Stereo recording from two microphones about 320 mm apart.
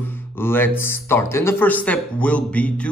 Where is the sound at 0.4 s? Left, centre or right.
Centre.